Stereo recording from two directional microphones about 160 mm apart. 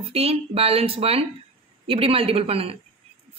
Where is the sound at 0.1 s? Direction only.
40° right (ahead or behind).